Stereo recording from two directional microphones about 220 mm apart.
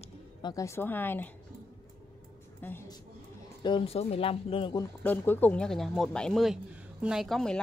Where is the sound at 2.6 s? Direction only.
10° left (ahead or behind).